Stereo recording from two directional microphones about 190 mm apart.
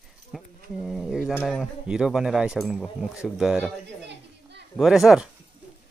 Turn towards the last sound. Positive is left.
turn(degrees=-5)  # may be behind; listen again after turning